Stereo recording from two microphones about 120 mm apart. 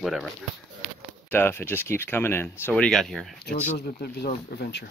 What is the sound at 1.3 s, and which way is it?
Speech, 20° left (ahead or behind).